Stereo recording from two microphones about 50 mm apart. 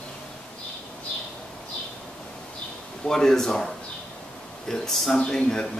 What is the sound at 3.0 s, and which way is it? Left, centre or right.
Speech, centre.